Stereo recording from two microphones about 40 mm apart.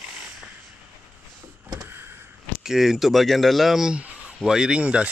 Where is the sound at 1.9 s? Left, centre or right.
Right.